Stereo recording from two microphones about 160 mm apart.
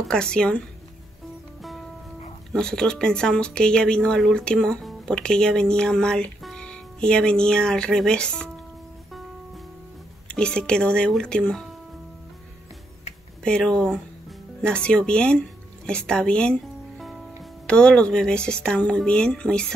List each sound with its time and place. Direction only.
0.1 s speech: 5° left (ahead or behind)
2.5 s speech: 5° left (ahead or behind)
10.2 s speech: 5° left (ahead or behind)
13.4 s speech: 5° left (ahead or behind)